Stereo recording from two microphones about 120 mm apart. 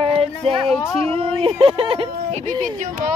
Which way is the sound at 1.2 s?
55° right (ahead or behind).